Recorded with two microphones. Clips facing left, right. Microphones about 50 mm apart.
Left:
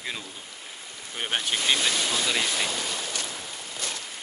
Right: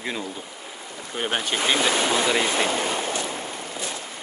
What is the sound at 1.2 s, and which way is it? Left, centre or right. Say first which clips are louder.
Speech: right 3 dB; centre.